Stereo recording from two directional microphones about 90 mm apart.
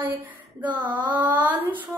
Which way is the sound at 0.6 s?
15° right (ahead or behind).